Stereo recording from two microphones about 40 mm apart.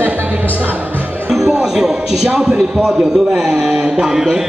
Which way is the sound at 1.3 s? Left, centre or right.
Centre.